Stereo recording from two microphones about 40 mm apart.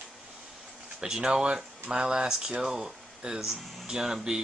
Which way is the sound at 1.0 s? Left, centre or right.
Centre.